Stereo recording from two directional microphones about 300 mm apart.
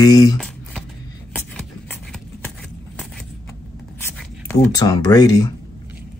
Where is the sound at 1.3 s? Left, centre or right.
Centre.